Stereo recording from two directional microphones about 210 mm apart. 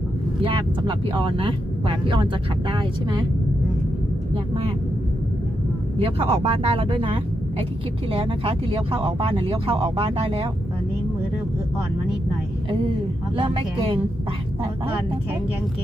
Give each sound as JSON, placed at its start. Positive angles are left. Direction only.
{"t": 0.4, "sound": "speech", "side_deg": -25}
{"t": 5.9, "sound": "speech", "side_deg": -30}
{"t": 13.4, "sound": "speech", "side_deg": -25}